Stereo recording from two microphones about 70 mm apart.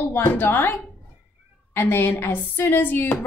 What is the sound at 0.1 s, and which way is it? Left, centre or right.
A woman's voice, left.